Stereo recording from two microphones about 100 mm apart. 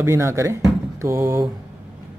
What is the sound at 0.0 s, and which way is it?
Speech, 30° right (ahead or behind).